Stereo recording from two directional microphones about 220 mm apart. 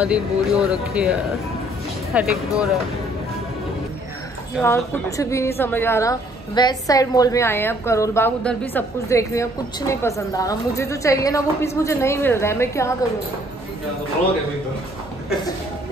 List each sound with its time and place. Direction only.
0.0 s speech: 5° right (ahead or behind)
2.1 s speech: centre (ahead or behind)
4.6 s a woman's voice: 5° left (ahead or behind)